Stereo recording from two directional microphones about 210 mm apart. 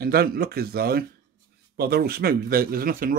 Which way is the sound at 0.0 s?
45° right (ahead or behind).